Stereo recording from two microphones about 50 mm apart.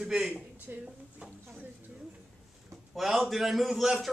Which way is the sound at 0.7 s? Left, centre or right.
Right.